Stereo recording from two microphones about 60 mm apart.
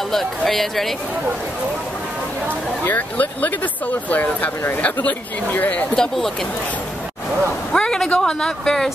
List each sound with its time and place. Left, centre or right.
0.1 s speech: centre
2.8 s speech: left
5.9 s speech: centre
7.7 s speech: centre